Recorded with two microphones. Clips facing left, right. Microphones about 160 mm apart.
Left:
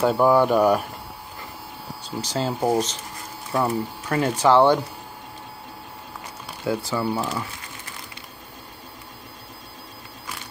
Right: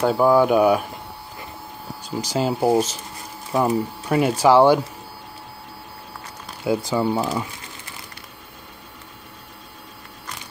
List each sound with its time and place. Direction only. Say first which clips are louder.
0.0 s speech: right 1 dB; centre (ahead or behind)
2.0 s speech: right 4 dB; 10° right (ahead or behind)
6.6 s speech: right 4 dB; 15° right (ahead or behind)